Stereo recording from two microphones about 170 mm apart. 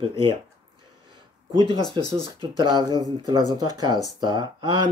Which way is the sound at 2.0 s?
30° right (ahead or behind).